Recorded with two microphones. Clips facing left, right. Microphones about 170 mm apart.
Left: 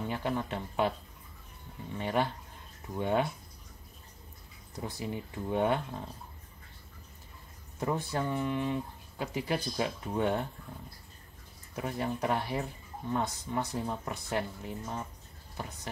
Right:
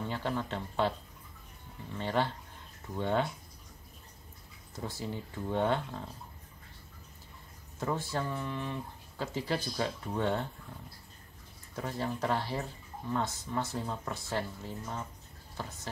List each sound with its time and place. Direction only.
0.1 s speech: 15° left (ahead or behind)
2.0 s speech: 15° left (ahead or behind)
4.7 s speech: 15° left (ahead or behind)
7.8 s speech: 15° left (ahead or behind)
11.7 s speech: 15° left (ahead or behind)